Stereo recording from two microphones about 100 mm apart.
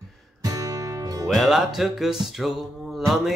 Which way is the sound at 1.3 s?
Centre (ahead or behind).